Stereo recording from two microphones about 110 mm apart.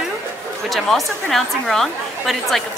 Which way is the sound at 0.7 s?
Centre (ahead or behind).